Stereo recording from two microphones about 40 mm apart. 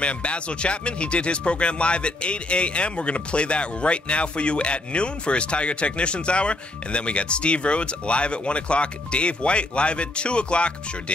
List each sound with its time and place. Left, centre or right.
0.0 s speech: left